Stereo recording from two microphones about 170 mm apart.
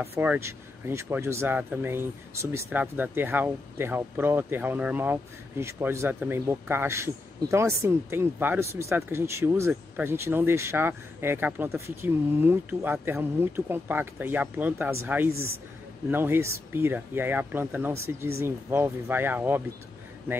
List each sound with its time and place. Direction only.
0.0 s speech: 10° right (ahead or behind)